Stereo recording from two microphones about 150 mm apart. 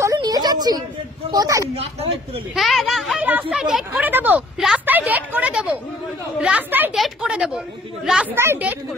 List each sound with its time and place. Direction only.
0.0 s a sound: 25° right (ahead or behind)
1.3 s a man's voice: 25° right (ahead or behind)
1.8 s speech: 40° right (ahead or behind)
2.5 s a woman's voice: centre (ahead or behind)